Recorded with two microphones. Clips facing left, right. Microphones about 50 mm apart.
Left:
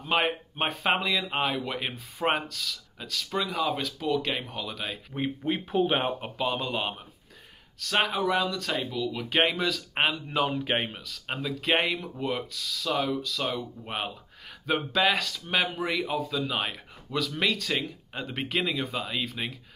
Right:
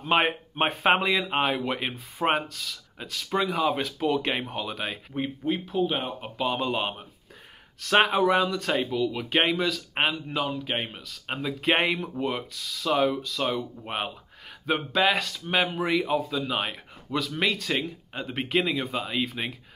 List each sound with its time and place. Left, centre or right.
0.0 s speech: centre
1.9 s speech: centre
5.7 s speech: left
6.3 s speech: centre
7.8 s speech: right; by 10.4 s centre
10.4 s speech: centre